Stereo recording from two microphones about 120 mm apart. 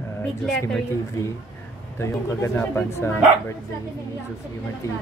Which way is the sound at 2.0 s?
20° left (ahead or behind).